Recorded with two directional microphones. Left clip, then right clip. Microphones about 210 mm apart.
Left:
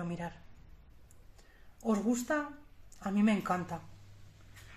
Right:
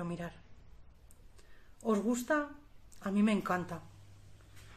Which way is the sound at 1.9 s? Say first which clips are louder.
Right 1 dB; 5° left (ahead or behind).